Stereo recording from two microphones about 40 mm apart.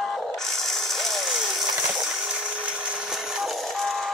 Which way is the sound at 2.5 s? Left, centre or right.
Right.